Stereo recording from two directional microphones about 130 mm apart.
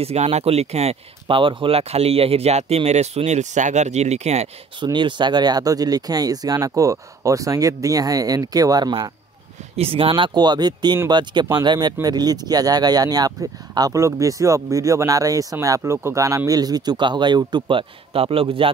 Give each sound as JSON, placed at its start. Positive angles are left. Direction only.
{"t": 0.0, "sound": "speech", "side_deg": -55}
{"t": 1.2, "sound": "speech", "side_deg": -40}
{"t": 4.7, "sound": "speech", "side_deg": -35}
{"t": 9.8, "sound": "speech", "side_deg": -45}